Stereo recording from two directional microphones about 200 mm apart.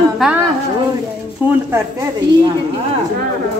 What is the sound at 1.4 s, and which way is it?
Speech, 10° right (ahead or behind).